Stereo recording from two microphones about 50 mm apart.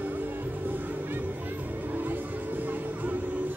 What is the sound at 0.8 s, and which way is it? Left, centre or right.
Music, right.